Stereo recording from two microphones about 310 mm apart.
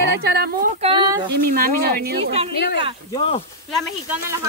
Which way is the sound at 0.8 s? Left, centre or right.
Centre.